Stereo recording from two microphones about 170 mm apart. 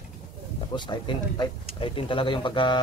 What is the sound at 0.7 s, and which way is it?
A man's voice, 25° left (ahead or behind).